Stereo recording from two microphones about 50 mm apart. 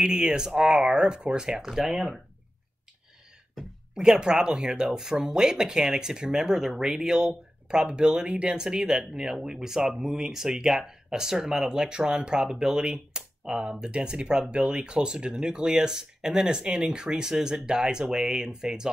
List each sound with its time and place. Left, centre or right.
0.0 s speech: centre
3.9 s speech: centre